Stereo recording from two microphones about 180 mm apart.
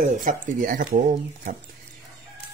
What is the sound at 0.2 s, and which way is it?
Speech, 45° right (ahead or behind).